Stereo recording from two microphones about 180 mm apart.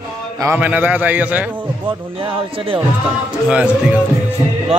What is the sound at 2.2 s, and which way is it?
Speech, 30° right (ahead or behind).